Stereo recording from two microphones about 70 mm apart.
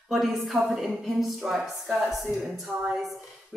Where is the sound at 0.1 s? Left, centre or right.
Centre.